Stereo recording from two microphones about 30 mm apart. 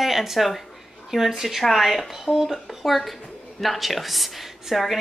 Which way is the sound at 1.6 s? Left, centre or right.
Centre.